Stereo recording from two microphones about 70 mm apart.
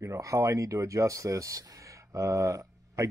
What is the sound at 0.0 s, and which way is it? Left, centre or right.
Speech, right.